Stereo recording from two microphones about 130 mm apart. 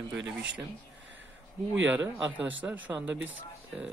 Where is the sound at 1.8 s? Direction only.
15° right (ahead or behind).